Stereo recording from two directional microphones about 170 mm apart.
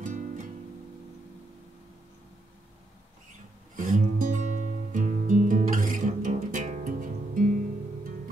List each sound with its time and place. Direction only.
0.0 s music: 50° right (ahead or behind)
3.7 s music: 50° right (ahead or behind)